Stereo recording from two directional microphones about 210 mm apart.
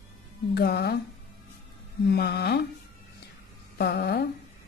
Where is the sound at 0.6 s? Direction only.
50° left (ahead or behind).